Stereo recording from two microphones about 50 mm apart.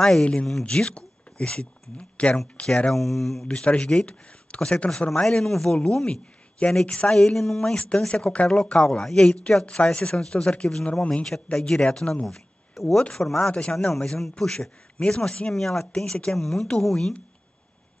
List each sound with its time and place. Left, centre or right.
0.2 s speech: left
3.0 s speech: centre
3.4 s speech: centre
7.6 s speech: left
8.8 s speech: centre
13.5 s speech: left
15.5 s speech: centre